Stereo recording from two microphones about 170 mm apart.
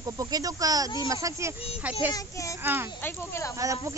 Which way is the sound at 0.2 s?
20° right (ahead or behind).